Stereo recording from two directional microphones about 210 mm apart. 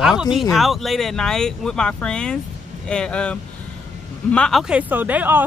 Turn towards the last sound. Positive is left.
turn(degrees=-10)  # may be behind; listen again after turning